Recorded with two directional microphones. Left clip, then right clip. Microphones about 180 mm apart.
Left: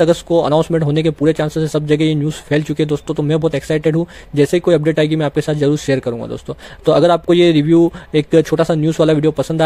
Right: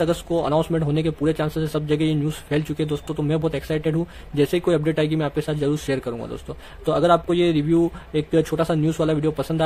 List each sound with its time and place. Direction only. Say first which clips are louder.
0.0 s speech: left 9 dB; 40° left (ahead or behind)